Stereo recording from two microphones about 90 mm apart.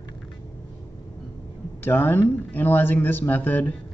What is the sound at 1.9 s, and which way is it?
Speech, 20° left (ahead or behind).